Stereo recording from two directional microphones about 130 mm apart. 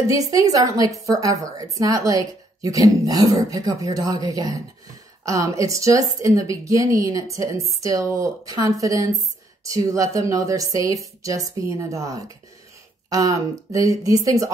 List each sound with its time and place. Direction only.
0.0 s a woman's voice: 25° right (ahead or behind)